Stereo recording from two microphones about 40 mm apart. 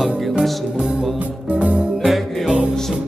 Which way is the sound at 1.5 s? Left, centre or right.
Right.